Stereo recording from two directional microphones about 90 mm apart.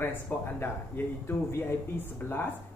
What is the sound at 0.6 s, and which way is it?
Speech, 25° left (ahead or behind).